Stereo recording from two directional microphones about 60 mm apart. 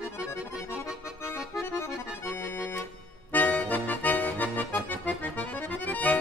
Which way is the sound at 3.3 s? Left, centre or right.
Left.